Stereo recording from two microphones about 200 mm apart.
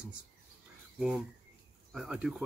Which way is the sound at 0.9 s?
5° right (ahead or behind).